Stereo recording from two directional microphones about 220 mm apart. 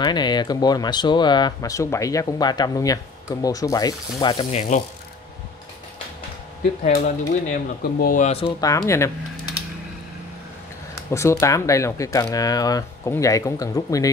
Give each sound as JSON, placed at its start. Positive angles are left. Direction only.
{"t": 0.0, "sound": "speech", "side_deg": 20}
{"t": 6.6, "sound": "speech", "side_deg": 40}
{"t": 11.1, "sound": "speech", "side_deg": 15}